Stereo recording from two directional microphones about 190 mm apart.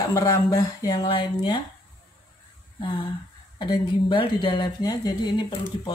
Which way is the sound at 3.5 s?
25° left (ahead or behind).